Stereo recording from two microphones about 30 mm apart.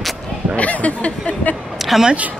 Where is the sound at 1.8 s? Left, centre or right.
Centre.